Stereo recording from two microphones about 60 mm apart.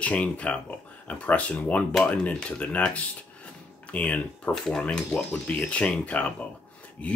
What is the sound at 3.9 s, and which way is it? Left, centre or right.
Speech, left.